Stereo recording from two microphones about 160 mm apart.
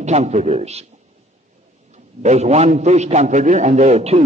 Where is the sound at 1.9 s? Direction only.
45° right (ahead or behind).